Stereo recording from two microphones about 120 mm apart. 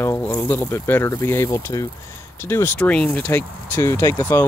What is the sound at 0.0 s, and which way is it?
Speech, 20° left (ahead or behind).